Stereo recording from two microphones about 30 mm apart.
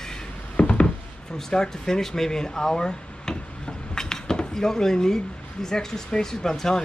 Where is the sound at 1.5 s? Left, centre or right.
Left.